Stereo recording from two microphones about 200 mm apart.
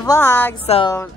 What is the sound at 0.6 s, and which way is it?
Music, 30° left (ahead or behind).